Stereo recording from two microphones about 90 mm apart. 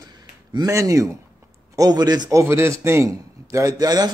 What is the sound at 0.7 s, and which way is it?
A man's voice, 40° right (ahead or behind).